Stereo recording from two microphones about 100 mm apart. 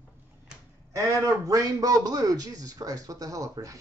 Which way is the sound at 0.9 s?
30° right (ahead or behind).